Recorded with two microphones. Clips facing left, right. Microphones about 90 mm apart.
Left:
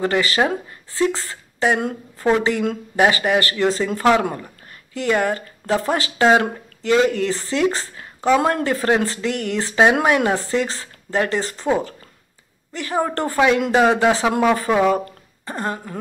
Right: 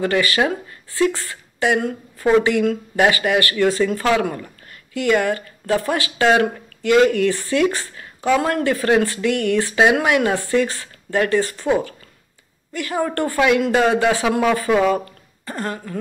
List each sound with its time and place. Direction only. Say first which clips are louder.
0.0 s a woman's voice: even; 25° left (ahead or behind)
12.7 s speech: even; 25° left (ahead or behind)
13.7 s a man's voice: left 1 dB; 15° left (ahead or behind)